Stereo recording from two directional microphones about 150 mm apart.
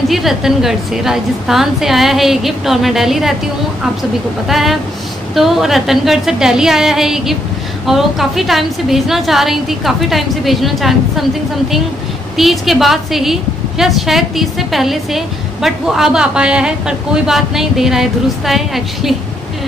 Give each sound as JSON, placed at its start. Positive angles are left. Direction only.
{"t": 0.1, "sound": "a woman's voice", "side_deg": 0}
{"t": 4.5, "sound": "a woman's voice", "side_deg": 0}
{"t": 12.4, "sound": "a woman's voice", "side_deg": 0}